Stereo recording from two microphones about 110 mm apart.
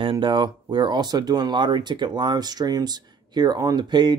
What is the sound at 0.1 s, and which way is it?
Speech, 40° right (ahead or behind).